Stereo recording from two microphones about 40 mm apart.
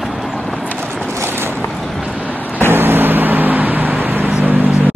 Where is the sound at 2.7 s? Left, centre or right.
Right.